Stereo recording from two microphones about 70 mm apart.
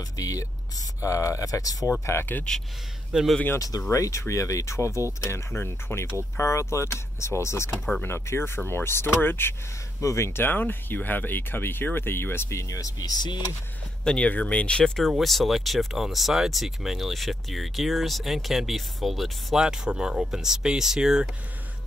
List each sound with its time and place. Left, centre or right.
0.2 s speech: left
2.1 s speech: left
3.1 s speech: centre
3.5 s speech: left
9.9 s speech: left
14.0 s speech: centre
15.0 s speech: centre